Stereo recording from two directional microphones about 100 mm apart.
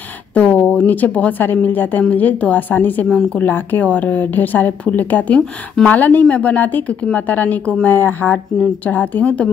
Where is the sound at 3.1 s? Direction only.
5° left (ahead or behind).